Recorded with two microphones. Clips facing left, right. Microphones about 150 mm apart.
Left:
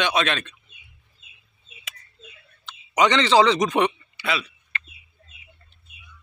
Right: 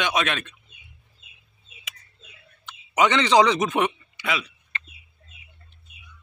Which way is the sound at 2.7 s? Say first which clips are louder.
Left 1 dB; 10° right (ahead or behind).